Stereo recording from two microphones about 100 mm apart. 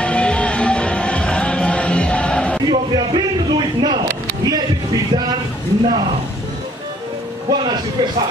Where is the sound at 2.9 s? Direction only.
45° right (ahead or behind).